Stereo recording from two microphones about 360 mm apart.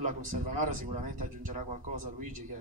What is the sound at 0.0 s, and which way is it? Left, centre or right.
A man's voice, right.